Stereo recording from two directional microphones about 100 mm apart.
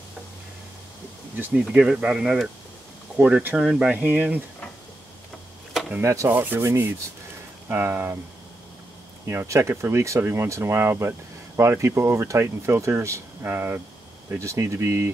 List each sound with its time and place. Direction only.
1.3 s speech: 15° right (ahead or behind)
5.7 s power windows: centre (ahead or behind)
5.9 s speech: 30° right (ahead or behind)
9.2 s speech: 25° right (ahead or behind)